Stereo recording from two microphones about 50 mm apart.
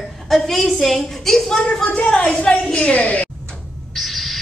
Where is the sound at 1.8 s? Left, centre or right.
Left.